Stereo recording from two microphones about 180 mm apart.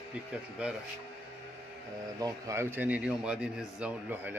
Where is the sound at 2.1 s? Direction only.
20° right (ahead or behind).